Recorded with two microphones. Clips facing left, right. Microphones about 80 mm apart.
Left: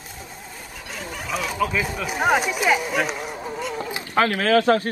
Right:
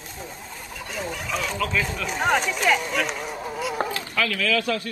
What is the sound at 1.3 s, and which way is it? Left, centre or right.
Speech, centre.